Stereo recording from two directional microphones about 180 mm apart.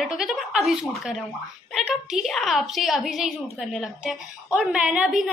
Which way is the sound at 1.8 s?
Centre (ahead or behind).